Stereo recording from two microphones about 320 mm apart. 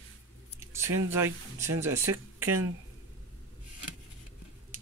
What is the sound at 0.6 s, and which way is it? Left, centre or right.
Speech, centre.